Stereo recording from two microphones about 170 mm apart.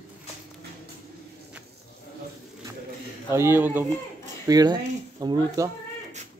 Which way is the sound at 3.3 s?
15° right (ahead or behind).